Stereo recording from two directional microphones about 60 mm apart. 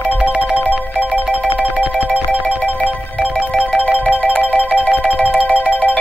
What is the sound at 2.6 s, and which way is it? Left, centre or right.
Music, left.